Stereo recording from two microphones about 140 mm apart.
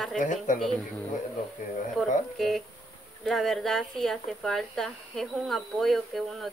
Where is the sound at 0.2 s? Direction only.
65° left (ahead or behind).